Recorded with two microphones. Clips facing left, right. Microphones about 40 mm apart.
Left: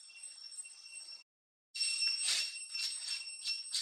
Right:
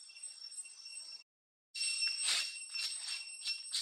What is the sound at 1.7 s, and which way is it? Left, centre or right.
Bicycle bell, centre.